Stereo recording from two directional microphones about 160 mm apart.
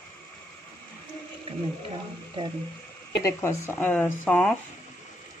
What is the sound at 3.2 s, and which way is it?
Speech, 15° left (ahead or behind).